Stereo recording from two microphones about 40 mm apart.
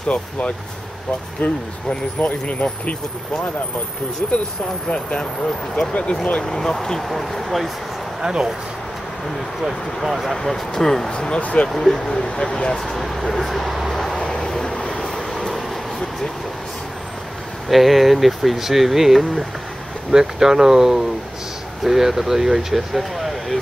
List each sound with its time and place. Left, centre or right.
1.4 s speech: left
4.2 s speech: left
6.2 s speech: left
7.1 s speech: centre
8.2 s speech: centre
10.0 s speech: centre
10.3 s speech: centre; by 11.7 s left
11.7 s speech: centre; by 12.7 s left
12.7 s speech: centre
13.9 s vehicle: centre
17.6 s speech: centre